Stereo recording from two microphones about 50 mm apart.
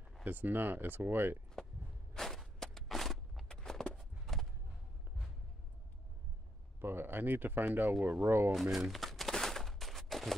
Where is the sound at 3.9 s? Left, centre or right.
Centre.